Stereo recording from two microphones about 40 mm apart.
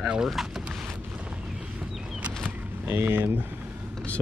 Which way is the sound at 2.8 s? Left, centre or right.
Right.